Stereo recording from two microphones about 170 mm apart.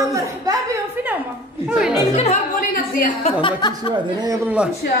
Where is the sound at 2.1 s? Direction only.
40° left (ahead or behind).